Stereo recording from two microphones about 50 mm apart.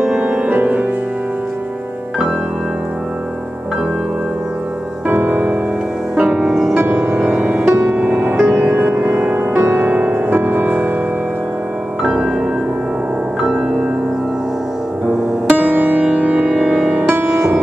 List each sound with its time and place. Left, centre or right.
0.0 s music: centre
5.0 s music: right
6.3 s music: centre
6.8 s music: right
12.0 s music: centre
15.0 s music: right
17.1 s music: right